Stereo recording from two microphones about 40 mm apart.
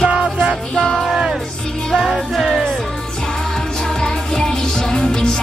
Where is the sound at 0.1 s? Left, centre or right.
Centre.